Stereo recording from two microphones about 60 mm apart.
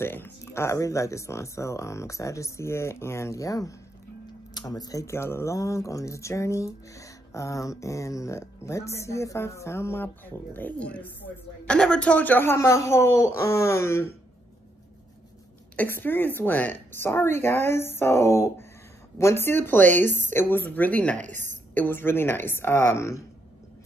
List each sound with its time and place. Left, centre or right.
0.0 s speech: left
4.6 s speech: left
5.0 s speech: left
11.6 s speech: centre; by 12.5 s left
12.5 s speech: left
15.9 s a woman's voice: left
21.7 s a woman's voice: left